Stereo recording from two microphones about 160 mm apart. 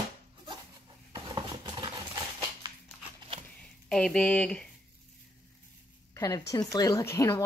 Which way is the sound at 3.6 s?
5° left (ahead or behind).